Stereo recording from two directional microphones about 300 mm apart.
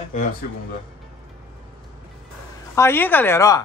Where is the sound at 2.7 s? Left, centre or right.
Centre.